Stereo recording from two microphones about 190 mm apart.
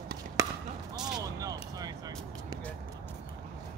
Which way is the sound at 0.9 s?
5° right (ahead or behind).